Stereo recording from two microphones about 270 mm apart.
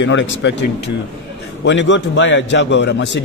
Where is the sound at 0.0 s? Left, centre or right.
Left.